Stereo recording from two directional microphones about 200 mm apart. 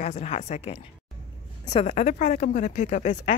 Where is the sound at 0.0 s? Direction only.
35° left (ahead or behind).